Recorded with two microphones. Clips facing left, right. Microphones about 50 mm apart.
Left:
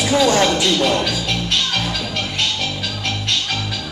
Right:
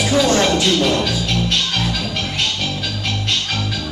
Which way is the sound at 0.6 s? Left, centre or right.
Centre.